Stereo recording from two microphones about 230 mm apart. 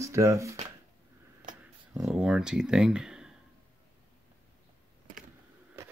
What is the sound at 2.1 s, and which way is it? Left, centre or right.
Speech, centre.